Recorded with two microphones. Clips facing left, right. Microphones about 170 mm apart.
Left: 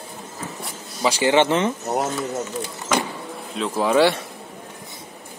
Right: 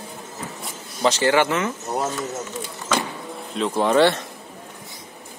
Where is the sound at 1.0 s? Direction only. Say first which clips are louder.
Even; 10° left (ahead or behind).